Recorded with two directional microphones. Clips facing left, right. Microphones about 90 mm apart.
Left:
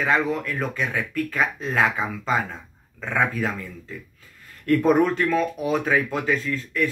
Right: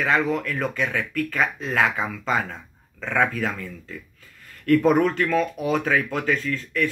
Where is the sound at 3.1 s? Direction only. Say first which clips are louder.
Right 1 dB; 30° left (ahead or behind).